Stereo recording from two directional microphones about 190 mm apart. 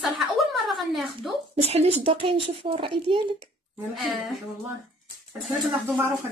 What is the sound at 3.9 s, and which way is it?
Speech, centre (ahead or behind).